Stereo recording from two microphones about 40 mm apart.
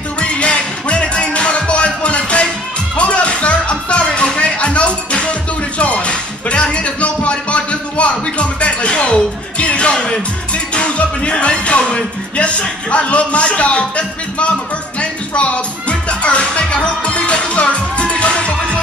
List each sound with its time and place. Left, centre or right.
0.2 s music: left